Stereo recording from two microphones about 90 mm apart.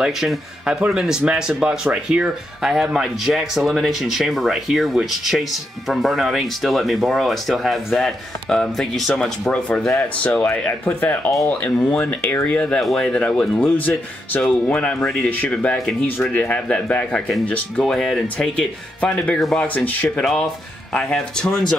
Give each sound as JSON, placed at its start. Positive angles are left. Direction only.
{"t": 0.0, "sound": "speech", "side_deg": -5}
{"t": 15.8, "sound": "speech", "side_deg": 0}
{"t": 16.3, "sound": "speech", "side_deg": 15}
{"t": 20.2, "sound": "speech", "side_deg": 5}